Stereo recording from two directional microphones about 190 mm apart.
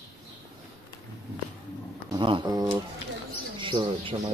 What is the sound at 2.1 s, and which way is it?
Speech, 25° right (ahead or behind).